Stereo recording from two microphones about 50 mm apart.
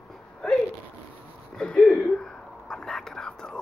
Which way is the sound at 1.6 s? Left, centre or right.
Centre.